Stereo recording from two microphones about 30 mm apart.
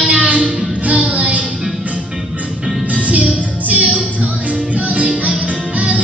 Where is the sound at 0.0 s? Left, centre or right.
Right.